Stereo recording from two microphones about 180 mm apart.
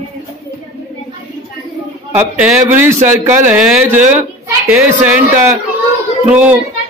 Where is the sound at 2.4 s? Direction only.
10° right (ahead or behind).